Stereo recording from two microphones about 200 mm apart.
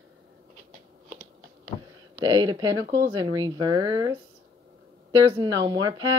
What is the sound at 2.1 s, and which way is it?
Speech, 20° right (ahead or behind).